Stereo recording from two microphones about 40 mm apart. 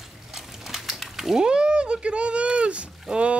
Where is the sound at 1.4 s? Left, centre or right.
Right.